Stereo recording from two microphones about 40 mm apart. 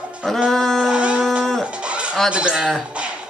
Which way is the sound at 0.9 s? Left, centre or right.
Right.